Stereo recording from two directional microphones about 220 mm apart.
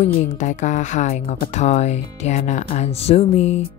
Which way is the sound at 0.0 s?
35° left (ahead or behind).